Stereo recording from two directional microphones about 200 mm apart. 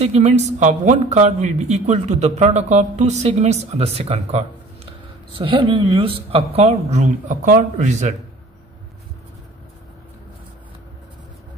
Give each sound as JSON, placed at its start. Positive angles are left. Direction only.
{"t": 0.0, "sound": "speech", "side_deg": -35}